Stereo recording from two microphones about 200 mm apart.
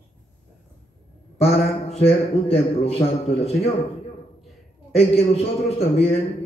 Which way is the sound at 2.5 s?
30° left (ahead or behind).